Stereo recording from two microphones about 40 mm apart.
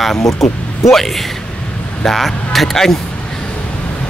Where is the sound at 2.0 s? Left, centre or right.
Centre.